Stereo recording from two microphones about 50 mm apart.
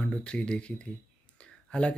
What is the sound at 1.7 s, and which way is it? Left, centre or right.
Speech, left.